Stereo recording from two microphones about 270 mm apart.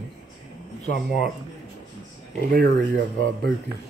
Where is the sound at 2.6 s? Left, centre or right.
Right.